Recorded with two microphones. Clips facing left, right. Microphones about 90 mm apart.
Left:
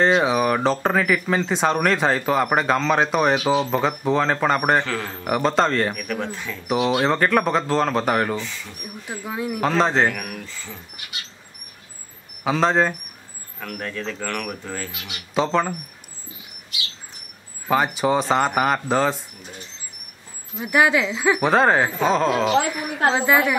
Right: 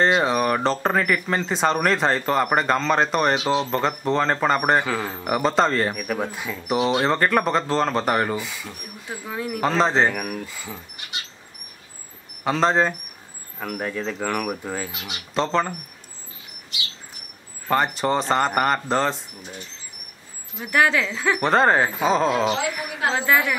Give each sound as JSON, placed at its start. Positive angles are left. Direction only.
{"t": 0.0, "sound": "speech", "side_deg": 0}
{"t": 6.7, "sound": "speech", "side_deg": 0}
{"t": 9.2, "sound": "speech", "side_deg": 15}
{"t": 9.6, "sound": "speech", "side_deg": 0}
{"t": 10.4, "sound": "speech", "side_deg": -10}
{"t": 12.4, "sound": "speech", "side_deg": 0}
{"t": 13.6, "sound": "speech", "side_deg": -15}
{"t": 14.9, "sound": "speech", "side_deg": -25}
{"t": 15.3, "sound": "speech", "side_deg": 5}
{"t": 17.6, "sound": "speech", "side_deg": 5}
{"t": 20.6, "sound": "speech", "side_deg": 15}
{"t": 21.5, "sound": "speech", "side_deg": 0}
{"t": 23.1, "sound": "speech", "side_deg": 15}